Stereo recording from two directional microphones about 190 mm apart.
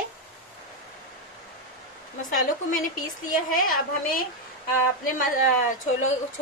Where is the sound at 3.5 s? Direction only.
45° left (ahead or behind).